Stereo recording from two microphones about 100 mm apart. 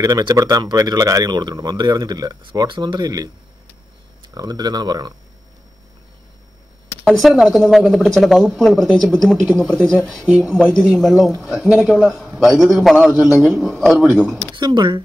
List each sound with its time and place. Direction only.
0.0 s speech: 40° right (ahead or behind)
7.1 s speech: centre (ahead or behind)
9.7 s speech: 15° left (ahead or behind)
10.2 s speech: 10° right (ahead or behind)
14.5 s speech: 50° right (ahead or behind)